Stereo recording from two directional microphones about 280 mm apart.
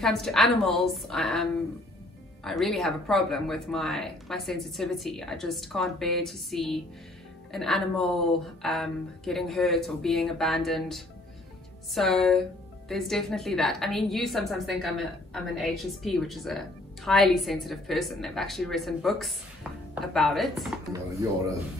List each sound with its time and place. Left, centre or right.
0.0 s a woman's voice: centre